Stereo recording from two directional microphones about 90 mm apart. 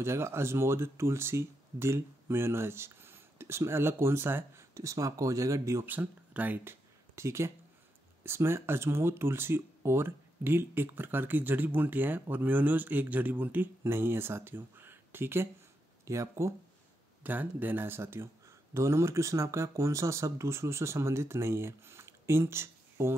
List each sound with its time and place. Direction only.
0.0 s speech: 30° right (ahead or behind)
5.9 s speech: 20° right (ahead or behind)
17.2 s speech: 20° right (ahead or behind)